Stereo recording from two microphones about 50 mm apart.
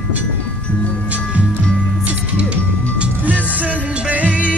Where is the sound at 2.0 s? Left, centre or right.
Right.